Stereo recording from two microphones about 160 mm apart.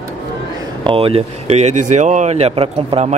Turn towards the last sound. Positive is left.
turn(degrees=-40)  # may be behind; listen again after turning